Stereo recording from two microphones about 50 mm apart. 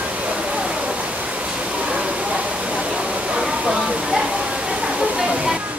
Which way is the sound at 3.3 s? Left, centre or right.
Centre.